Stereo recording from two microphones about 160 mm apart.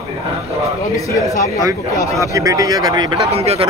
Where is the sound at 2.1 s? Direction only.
20° right (ahead or behind); by 3.6 s 40° right (ahead or behind).